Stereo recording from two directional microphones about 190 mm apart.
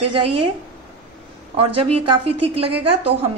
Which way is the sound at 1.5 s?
30° right (ahead or behind).